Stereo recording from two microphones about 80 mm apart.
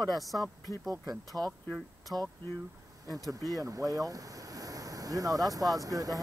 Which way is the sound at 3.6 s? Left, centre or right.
Right.